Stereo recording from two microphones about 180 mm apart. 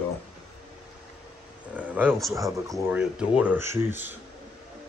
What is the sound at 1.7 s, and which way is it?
Speech, 10° right (ahead or behind).